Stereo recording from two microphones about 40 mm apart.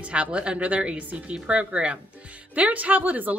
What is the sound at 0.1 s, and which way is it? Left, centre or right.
A woman's voice, right.